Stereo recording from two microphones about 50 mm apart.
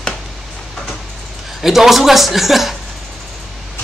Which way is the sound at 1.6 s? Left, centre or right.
Centre.